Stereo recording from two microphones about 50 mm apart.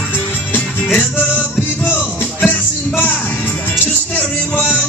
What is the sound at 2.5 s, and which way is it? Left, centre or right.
Music, left.